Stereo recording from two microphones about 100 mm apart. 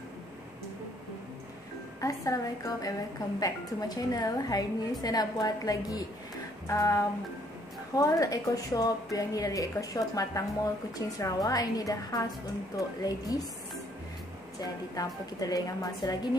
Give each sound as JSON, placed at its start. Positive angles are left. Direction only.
{"t": 2.0, "sound": "a woman's voice", "side_deg": 35}
{"t": 14.6, "sound": "a woman's voice", "side_deg": 40}